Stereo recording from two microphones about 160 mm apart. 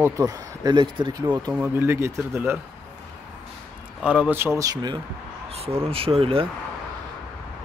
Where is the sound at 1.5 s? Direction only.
10° right (ahead or behind).